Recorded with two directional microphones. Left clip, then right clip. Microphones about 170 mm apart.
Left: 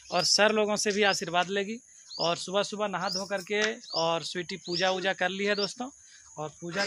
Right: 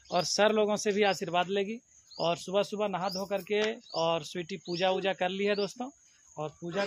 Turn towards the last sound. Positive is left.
turn(degrees=20)  # may be behind; listen again after turning